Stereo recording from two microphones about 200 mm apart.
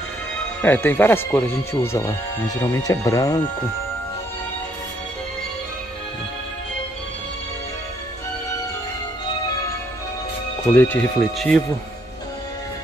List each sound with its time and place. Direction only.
0.6 s speech: 10° left (ahead or behind)
10.7 s speech: 10° left (ahead or behind)